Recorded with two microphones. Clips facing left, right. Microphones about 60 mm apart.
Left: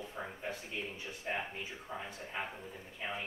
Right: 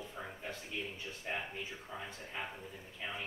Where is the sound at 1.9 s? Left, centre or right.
Centre.